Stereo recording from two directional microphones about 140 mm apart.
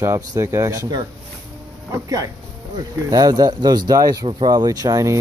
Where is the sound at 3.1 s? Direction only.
25° right (ahead or behind).